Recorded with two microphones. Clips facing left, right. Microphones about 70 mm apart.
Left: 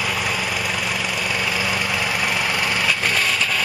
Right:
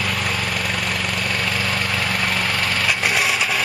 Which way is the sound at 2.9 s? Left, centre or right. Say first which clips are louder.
Right 1 dB; centre.